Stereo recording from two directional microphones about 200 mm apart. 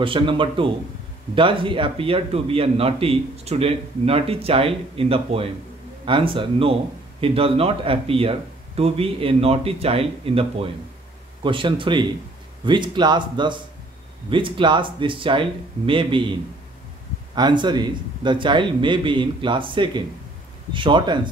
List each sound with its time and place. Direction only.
0.0 s speech: 25° right (ahead or behind)
17.4 s speech: 20° right (ahead or behind)